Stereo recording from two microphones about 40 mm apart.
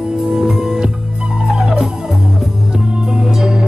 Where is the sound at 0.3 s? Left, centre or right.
Centre.